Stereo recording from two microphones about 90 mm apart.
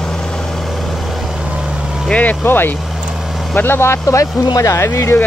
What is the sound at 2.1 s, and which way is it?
Vehicle, 15° left (ahead or behind).